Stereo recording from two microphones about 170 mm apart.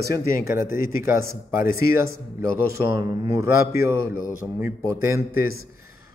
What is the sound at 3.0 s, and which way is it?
A man's voice, 15° right (ahead or behind).